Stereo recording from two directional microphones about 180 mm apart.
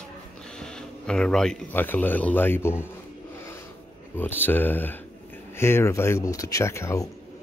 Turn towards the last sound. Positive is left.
turn(degrees=15)  # may be behind; listen again after turning